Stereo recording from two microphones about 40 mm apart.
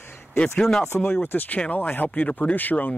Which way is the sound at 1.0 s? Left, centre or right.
Left.